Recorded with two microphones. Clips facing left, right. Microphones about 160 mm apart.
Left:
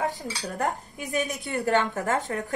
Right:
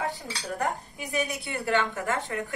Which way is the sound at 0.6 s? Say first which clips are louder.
Left 2 dB; 40° left (ahead or behind).